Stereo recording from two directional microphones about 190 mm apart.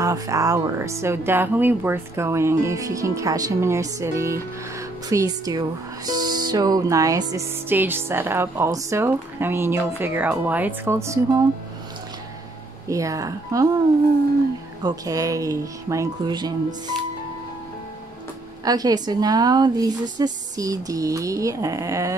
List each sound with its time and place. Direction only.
0.0 s speech: 15° right (ahead or behind)
12.8 s speech: 15° right (ahead or behind)
14.8 s speech: 20° right (ahead or behind)
18.6 s a woman's voice: 20° right (ahead or behind)